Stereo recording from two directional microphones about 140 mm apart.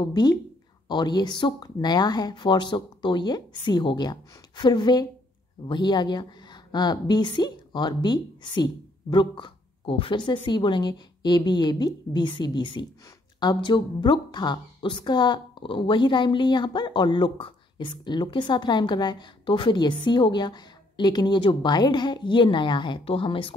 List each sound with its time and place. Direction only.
0.0 s a woman's voice: 30° left (ahead or behind)